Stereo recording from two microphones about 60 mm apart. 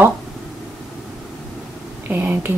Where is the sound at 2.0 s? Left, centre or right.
Right.